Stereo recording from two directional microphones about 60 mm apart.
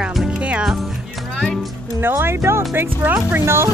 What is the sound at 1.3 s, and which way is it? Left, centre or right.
Music, centre.